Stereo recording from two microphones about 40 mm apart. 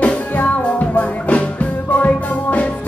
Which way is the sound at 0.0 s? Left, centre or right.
Left.